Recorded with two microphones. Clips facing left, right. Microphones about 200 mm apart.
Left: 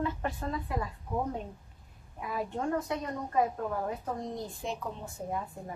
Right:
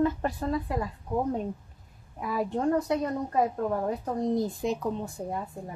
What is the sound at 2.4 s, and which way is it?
Speech, 35° right (ahead or behind).